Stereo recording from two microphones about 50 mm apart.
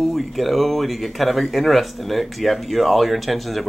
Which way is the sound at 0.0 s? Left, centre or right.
Centre.